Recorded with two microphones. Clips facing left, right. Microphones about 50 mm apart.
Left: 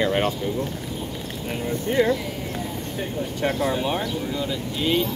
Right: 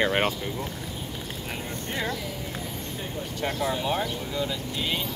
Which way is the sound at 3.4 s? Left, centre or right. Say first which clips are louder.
Left 4 dB; centre.